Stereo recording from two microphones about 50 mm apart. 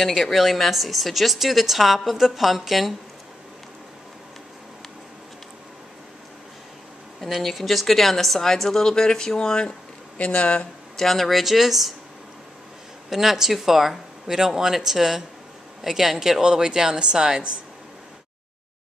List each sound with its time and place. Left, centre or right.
0.0 s a woman's voice: centre
7.4 s speech: centre; by 10.7 s left
11.0 s a woman's voice: centre
13.1 s speech: centre